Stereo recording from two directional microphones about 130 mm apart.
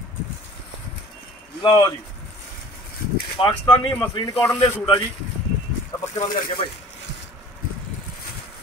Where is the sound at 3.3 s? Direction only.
40° left (ahead or behind).